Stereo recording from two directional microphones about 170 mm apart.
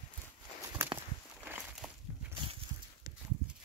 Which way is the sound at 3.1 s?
20° right (ahead or behind).